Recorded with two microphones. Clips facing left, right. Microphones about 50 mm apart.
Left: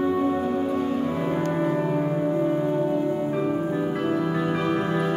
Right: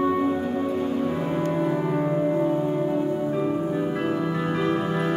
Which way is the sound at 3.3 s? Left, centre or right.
Centre.